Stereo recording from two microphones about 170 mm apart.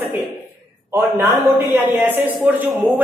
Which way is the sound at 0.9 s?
15° right (ahead or behind).